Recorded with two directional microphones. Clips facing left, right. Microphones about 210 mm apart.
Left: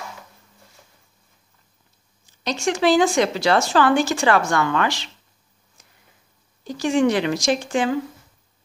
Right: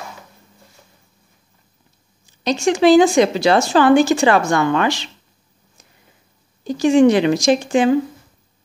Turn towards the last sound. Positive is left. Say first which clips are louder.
# right 6 dB
turn(degrees=-20)  # may be behind; listen again after turning